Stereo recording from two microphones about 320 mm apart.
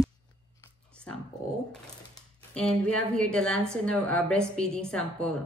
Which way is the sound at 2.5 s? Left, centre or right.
Centre.